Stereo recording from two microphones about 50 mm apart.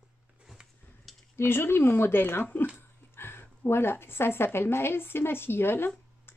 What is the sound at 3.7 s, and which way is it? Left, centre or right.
Speech, left.